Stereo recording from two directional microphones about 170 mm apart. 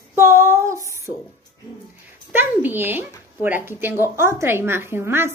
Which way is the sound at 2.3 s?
10° right (ahead or behind).